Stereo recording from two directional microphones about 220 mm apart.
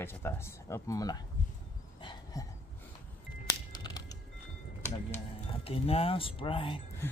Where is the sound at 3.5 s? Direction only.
20° left (ahead or behind).